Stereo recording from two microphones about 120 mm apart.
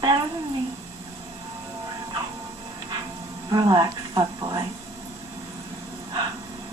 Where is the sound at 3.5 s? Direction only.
35° right (ahead or behind).